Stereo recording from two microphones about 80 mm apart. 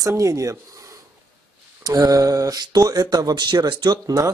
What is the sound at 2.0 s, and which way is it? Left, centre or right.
Speech, right.